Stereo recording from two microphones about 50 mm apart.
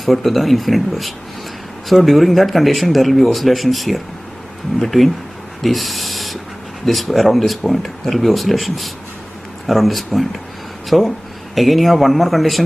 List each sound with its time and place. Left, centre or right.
0.0 s speech: centre
5.6 s a sound: centre
6.9 s a man's voice: centre